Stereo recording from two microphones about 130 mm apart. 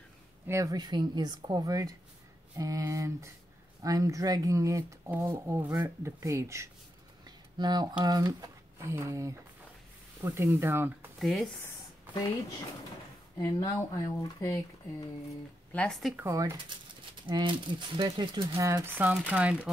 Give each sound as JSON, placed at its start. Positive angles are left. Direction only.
{"t": 0.5, "sound": "speech", "side_deg": -25}
{"t": 7.2, "sound": "a sound", "side_deg": -35}
{"t": 8.0, "sound": "speech", "side_deg": -30}
{"t": 11.1, "sound": "speech", "side_deg": 0}
{"t": 13.4, "sound": "speech", "side_deg": 20}
{"t": 15.7, "sound": "speech", "side_deg": 10}
{"t": 16.2, "sound": "speech", "side_deg": -20}
{"t": 17.3, "sound": "speech", "side_deg": -35}
{"t": 18.6, "sound": "speech", "side_deg": -25}